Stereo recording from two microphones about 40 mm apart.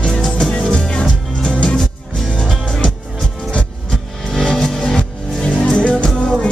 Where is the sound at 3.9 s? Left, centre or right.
Centre.